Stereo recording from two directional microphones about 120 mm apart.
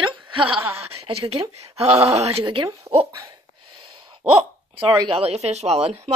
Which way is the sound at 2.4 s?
45° right (ahead or behind).